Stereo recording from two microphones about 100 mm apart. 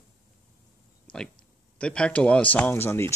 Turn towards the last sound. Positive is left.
turn(degrees=25)  # may be behind; listen again after turning